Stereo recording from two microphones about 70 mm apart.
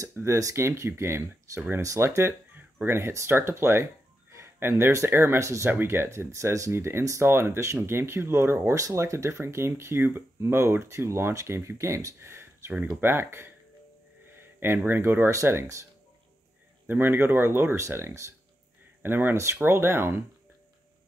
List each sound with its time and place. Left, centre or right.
0.1 s speech: right
2.5 s a sound: right
3.3 s speech: right
4.3 s a sound: right
4.9 s speech: right
5.4 s speech: right
5.7 s speech: right
6.7 s speech: right
12.2 s a sound: right
13.0 s speech: right
14.3 s a sound: right
15.0 s speech: right
16.8 s speech: right
19.0 s speech: right